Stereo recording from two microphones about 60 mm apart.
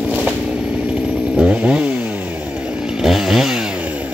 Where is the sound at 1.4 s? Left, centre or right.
Centre.